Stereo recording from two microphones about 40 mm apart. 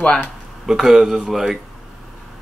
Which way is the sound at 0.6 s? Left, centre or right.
Centre.